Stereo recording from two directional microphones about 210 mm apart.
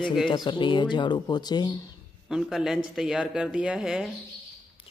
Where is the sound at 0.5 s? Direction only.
25° left (ahead or behind).